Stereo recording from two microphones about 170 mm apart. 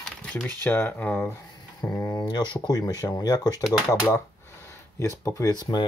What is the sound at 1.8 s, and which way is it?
Speech, 25° left (ahead or behind).